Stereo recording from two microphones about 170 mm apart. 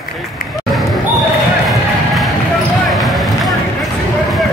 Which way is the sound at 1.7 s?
Centre (ahead or behind).